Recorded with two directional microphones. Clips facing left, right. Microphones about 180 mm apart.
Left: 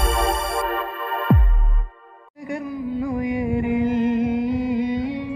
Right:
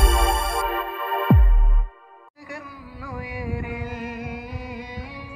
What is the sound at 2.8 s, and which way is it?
Music, 25° left (ahead or behind).